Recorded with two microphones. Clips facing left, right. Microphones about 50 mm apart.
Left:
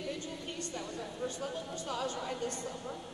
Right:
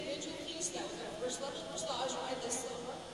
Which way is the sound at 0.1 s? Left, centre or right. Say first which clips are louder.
Left 1 dB; left.